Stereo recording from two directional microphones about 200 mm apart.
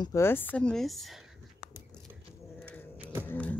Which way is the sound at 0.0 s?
15° left (ahead or behind).